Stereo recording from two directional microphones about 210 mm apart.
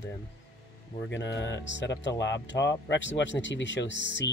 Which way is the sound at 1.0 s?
60° left (ahead or behind).